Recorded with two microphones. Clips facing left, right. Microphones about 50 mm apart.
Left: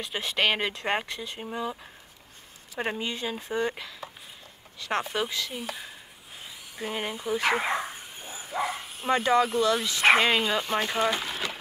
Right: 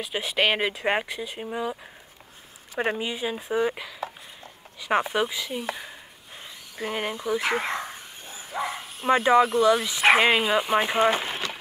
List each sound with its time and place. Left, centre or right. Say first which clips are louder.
0.0 s speech: right 2 dB; centre
6.8 s speech: right 3 dB; centre
7.5 s bow-wow: even; centre
9.1 s speech: right 4 dB; centre
11.1 s speech: right 4 dB; right